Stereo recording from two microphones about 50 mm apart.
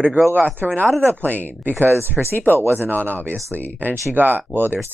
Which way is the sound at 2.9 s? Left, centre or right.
Left.